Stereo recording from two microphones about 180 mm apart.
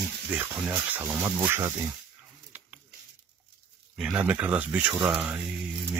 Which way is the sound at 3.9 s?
5° right (ahead or behind).